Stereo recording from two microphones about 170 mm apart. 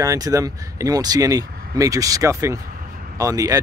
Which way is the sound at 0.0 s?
20° right (ahead or behind).